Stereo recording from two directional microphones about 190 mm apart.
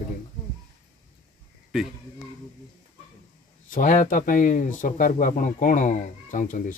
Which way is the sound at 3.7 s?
45° left (ahead or behind).